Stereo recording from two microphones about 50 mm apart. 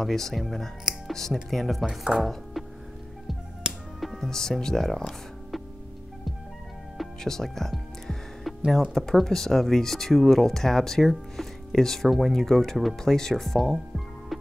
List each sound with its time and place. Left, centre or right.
0.0 s speech: centre
2.1 s chopping: centre
4.0 s music: centre
4.3 s speech: centre
7.2 s music: centre
8.9 s speech: centre
12.9 s speech: centre